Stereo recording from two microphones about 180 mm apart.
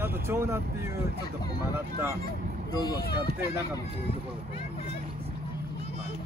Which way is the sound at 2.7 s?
20° left (ahead or behind).